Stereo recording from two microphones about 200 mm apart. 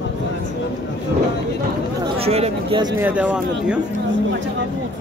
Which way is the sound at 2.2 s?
30° right (ahead or behind).